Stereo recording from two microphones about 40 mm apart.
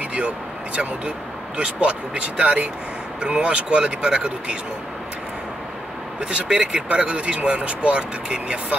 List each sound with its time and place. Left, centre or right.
1.6 s speech: right
6.3 s speech: right